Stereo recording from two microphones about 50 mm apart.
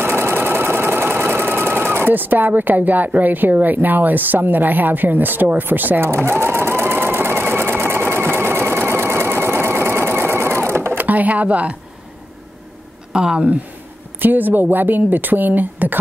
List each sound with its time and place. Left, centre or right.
0.0 s sewing machine: right
3.2 s a woman's voice: right
6.0 s sewing machine: right
11.0 s speech: right
13.1 s a woman's voice: centre
14.2 s a woman's voice: right